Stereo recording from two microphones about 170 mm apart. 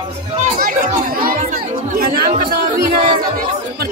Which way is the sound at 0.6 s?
55° right (ahead or behind).